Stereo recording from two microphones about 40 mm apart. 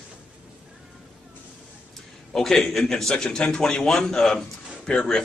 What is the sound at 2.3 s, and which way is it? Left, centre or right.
A man's voice, centre.